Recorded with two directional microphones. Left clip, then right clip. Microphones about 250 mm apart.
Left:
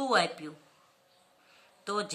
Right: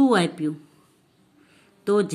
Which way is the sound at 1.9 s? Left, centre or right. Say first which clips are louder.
Right 11 dB; centre.